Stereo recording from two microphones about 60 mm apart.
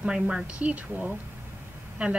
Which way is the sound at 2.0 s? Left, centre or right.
Centre.